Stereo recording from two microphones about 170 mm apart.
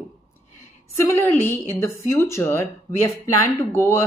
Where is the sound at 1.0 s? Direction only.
15° left (ahead or behind).